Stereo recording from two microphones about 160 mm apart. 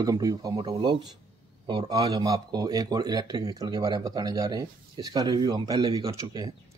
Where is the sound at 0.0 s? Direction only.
20° right (ahead or behind).